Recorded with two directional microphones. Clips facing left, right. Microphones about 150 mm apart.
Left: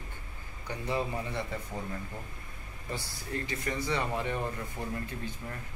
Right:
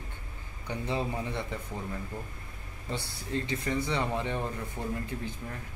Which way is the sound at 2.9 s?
20° right (ahead or behind).